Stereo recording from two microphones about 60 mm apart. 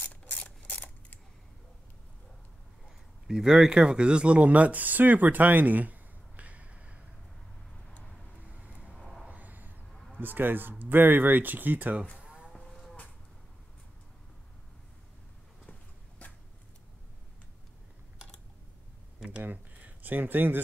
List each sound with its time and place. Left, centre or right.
0.1 s mechanisms: left
3.3 s speech: centre
8.5 s vehicle: right
8.9 s vehicle: centre
9.3 s a sound: right
10.1 s speech: right
12.2 s moo: centre
12.5 s livestock: centre
16.2 s a sound: left
19.2 s a sound: right